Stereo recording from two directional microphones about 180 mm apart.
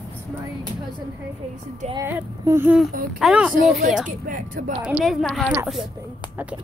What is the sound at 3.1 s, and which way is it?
Speech, 5° right (ahead or behind).